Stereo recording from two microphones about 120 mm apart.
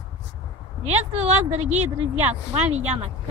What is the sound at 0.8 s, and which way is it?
A woman's voice, 60° right (ahead or behind).